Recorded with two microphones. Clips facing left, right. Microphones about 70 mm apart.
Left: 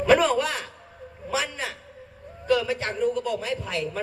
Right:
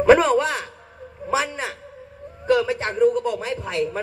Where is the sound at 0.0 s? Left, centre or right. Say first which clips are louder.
Right 5 dB; right.